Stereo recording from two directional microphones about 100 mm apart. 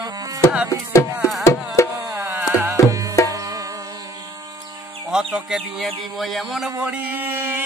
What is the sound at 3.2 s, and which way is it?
Music, 35° right (ahead or behind).